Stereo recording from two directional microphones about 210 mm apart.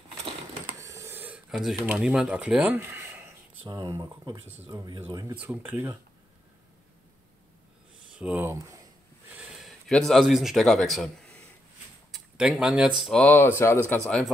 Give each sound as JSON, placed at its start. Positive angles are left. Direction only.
{"t": 0.7, "sound": "a sound", "side_deg": -15}
{"t": 1.9, "sound": "speech", "side_deg": -5}
{"t": 5.4, "sound": "speech", "side_deg": -5}
{"t": 8.1, "sound": "speech", "side_deg": -5}